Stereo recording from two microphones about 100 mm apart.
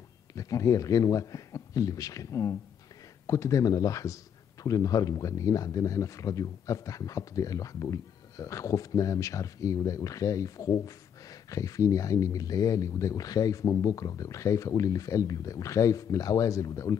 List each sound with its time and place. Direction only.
0.3 s a man's voice: 35° left (ahead or behind)